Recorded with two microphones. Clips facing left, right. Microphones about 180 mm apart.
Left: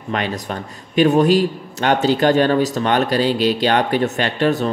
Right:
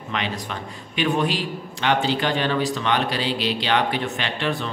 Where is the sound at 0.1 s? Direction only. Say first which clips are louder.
Left 5 dB; 45° left (ahead or behind).